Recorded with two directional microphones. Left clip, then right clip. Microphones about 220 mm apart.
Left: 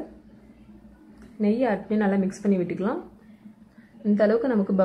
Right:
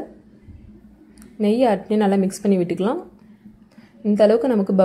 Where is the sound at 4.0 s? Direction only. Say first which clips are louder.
Right 6 dB; 20° right (ahead or behind).